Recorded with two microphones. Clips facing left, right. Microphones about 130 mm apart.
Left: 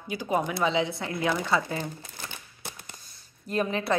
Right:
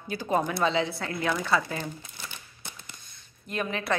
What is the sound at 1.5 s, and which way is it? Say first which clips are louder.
Speech: even; 20° left (ahead or behind).